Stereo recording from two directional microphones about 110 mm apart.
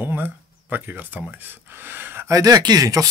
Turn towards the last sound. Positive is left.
turn(degrees=-35)  # may be behind; listen again after turning